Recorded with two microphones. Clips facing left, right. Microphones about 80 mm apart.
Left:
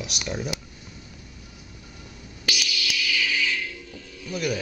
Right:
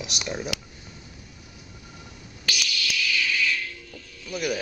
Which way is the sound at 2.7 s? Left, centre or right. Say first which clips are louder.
Right 2 dB; centre.